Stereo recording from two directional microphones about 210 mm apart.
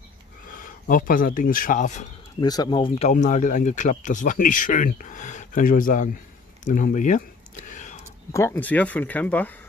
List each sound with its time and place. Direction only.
0.6 s speech: 40° left (ahead or behind)
2.4 s speech: 20° left (ahead or behind)
3.1 s speech: 35° left (ahead or behind)
6.6 s a sound: 40° left (ahead or behind)
8.3 s speech: 10° left (ahead or behind)